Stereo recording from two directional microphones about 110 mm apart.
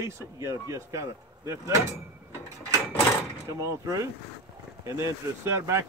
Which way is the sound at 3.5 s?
30° right (ahead or behind).